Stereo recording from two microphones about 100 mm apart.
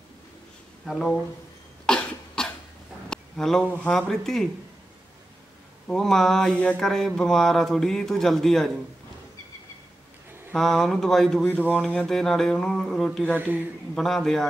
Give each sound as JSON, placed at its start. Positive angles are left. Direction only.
{"t": 0.8, "sound": "speech", "side_deg": 5}
{"t": 1.9, "sound": "cough", "side_deg": 10}
{"t": 3.1, "sound": "a sound", "side_deg": 5}
{"t": 3.9, "sound": "speech", "side_deg": 5}
{"t": 5.9, "sound": "speech", "side_deg": 5}
{"t": 10.5, "sound": "speech", "side_deg": 5}
{"t": 13.3, "sound": "speech", "side_deg": -15}
{"t": 13.9, "sound": "speech", "side_deg": 5}